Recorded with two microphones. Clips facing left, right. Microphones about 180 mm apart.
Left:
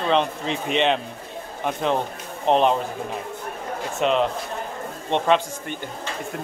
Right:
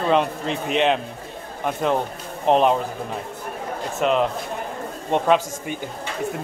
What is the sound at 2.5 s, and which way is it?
Speech, 5° right (ahead or behind).